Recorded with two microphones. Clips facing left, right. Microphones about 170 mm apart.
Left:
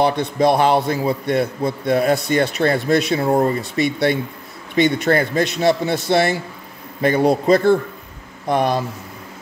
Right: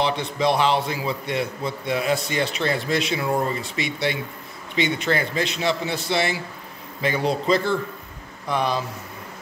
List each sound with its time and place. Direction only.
0.0 s a man's voice: 50° left (ahead or behind)